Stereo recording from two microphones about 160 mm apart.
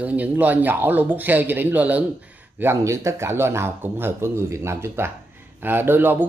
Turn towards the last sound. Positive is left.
turn(degrees=-15)  # may be behind; listen again after turning